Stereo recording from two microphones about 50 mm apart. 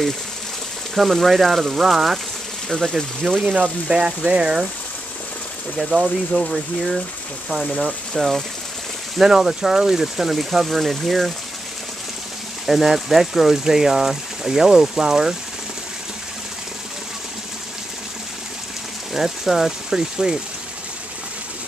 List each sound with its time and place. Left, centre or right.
1.1 s speech: centre
3.9 s speech: centre
5.8 s speech: centre
7.6 s speech: centre
9.2 s speech: centre
12.6 s speech: centre
19.1 s speech: centre